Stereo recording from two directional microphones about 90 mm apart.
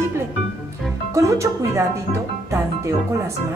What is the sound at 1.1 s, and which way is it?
Speech, 35° right (ahead or behind).